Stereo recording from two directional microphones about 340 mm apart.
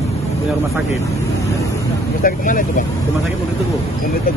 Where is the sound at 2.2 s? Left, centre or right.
Left.